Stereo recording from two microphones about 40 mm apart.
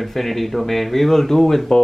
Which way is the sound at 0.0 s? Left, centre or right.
Centre.